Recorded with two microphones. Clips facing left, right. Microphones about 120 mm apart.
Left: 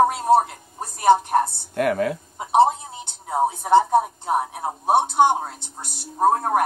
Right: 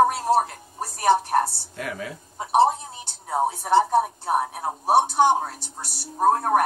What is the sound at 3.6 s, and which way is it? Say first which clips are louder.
A woman's voice: left 3 dB; 20° left (ahead or behind).